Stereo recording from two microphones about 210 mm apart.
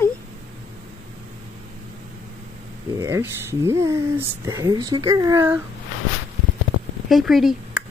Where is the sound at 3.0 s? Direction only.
15° right (ahead or behind).